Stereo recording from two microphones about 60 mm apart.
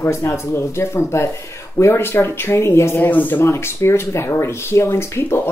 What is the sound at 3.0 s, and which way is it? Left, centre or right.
Speech, left.